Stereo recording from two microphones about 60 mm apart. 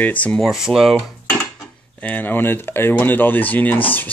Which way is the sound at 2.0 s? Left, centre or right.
Left.